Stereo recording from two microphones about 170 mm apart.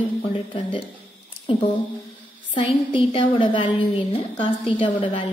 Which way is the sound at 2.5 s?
30° left (ahead or behind).